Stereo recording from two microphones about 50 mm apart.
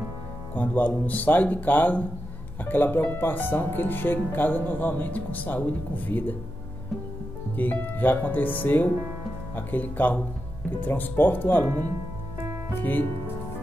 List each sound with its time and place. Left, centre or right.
0.6 s speech: left
7.5 s speech: left